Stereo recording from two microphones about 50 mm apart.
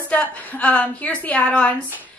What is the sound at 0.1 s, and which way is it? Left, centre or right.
A woman's voice, left.